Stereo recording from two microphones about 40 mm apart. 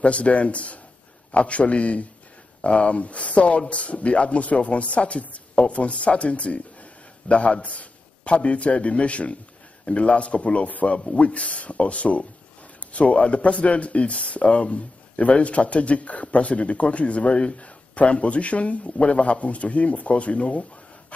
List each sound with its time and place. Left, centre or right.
0.0 s a man's voice: left